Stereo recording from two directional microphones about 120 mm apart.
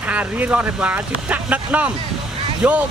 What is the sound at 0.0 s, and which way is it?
Speech, 10° right (ahead or behind).